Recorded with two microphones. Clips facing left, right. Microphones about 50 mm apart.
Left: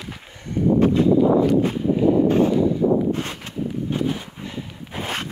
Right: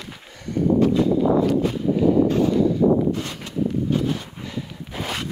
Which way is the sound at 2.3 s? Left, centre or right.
Left.